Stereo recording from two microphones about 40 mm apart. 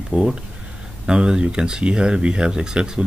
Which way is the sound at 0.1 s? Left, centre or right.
Right.